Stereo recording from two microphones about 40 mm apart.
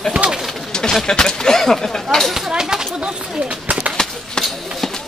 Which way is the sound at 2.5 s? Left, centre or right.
Centre.